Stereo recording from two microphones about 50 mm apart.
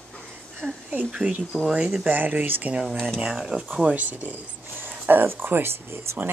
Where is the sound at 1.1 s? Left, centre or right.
Centre.